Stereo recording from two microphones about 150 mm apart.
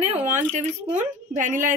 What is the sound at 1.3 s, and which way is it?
Speech, 60° right (ahead or behind).